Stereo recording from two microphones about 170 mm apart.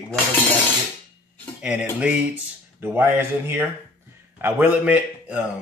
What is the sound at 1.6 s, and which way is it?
A man's voice, 5° right (ahead or behind).